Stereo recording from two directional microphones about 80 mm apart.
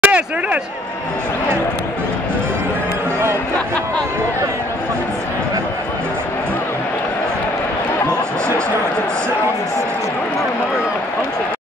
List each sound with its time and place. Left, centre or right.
0.0 s speech: centre